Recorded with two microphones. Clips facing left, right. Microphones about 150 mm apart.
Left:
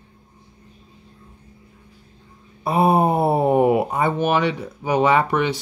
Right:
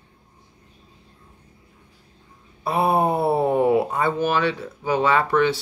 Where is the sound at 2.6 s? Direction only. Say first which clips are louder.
Left 3 dB; 15° left (ahead or behind).